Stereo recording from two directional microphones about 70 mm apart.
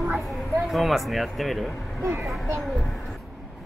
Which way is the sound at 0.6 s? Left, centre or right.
Centre.